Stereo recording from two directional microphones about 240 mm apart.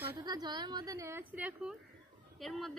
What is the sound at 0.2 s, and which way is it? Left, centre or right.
A woman's voice, centre.